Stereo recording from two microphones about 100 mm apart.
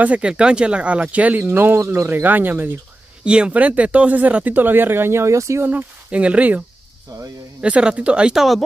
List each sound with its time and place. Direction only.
0.0 s speech: 15° right (ahead or behind); by 5.7 s 30° right (ahead or behind)
5.7 s speech: 15° right (ahead or behind)
7.1 s speech: 40° right (ahead or behind)
7.6 s speech: 10° right (ahead or behind)